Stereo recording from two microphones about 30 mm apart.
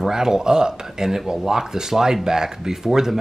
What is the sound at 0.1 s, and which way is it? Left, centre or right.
Speech, right.